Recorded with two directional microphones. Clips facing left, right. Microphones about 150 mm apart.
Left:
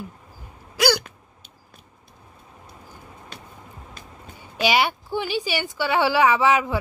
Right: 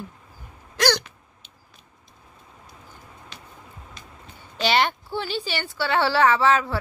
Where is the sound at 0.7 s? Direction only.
10° left (ahead or behind).